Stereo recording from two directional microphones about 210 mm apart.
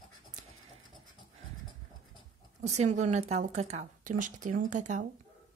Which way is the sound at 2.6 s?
35° right (ahead or behind).